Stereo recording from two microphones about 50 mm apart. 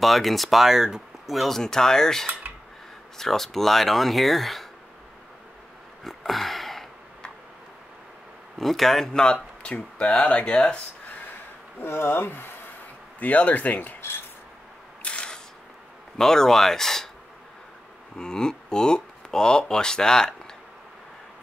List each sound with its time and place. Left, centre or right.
0.0 s speech: centre
1.6 s speech: centre
2.4 s a sound: right
3.2 s speech: centre
6.0 s a sound: centre
8.5 s speech: centre; by 11.1 s left
11.8 s speech: left
13.2 s speech: left
15.0 s a sound: centre
16.2 s speech: centre
18.1 s speech: centre